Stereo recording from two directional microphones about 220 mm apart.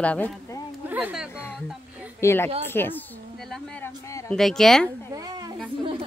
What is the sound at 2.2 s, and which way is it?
A woman's voice, 10° left (ahead or behind).